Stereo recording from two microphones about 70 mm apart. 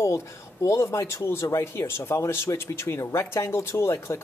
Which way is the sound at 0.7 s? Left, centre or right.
Left.